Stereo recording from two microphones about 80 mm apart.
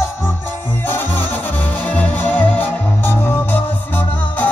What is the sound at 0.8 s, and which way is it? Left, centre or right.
Music, left.